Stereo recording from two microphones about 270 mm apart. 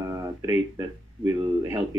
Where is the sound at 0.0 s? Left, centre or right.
Centre.